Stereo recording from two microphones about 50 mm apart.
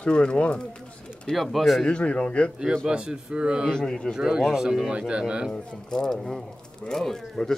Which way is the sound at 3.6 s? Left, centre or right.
Centre.